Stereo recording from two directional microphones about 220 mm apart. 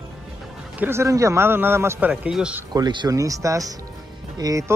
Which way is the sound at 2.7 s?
20° right (ahead or behind).